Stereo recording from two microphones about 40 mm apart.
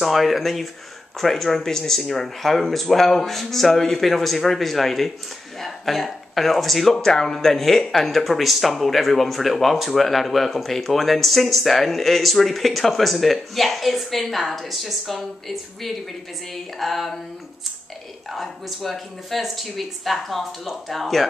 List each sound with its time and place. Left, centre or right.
0.0 s speech: centre
7.0 s speech: centre
18.3 s speech: centre